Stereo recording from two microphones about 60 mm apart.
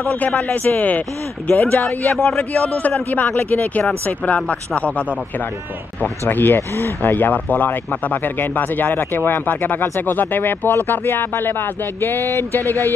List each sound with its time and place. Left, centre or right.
0.0 s speech: left
5.9 s speech: left